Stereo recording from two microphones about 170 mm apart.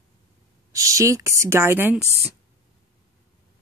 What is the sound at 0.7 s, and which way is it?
Speech, 20° right (ahead or behind).